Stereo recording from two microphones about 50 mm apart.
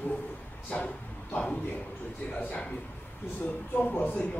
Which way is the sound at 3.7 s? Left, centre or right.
Left.